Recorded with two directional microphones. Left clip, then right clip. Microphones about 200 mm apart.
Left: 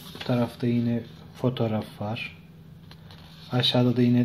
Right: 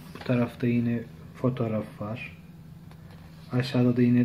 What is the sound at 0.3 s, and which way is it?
Speech, 30° left (ahead or behind).